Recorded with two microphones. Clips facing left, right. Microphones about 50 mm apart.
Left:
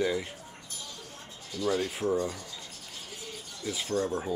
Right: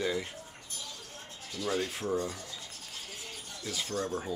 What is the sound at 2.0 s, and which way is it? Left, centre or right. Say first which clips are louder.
Speech: left 4 dB; centre.